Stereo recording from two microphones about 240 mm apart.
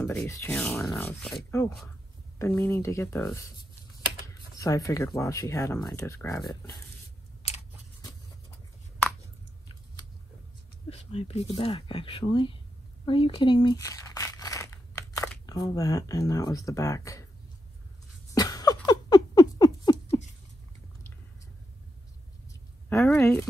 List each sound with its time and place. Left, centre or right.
0.0 s speech: centre
7.4 s scissors: left
10.9 s speech: left
18.3 s a sound: centre
18.9 s rodents: centre
22.8 s speech: centre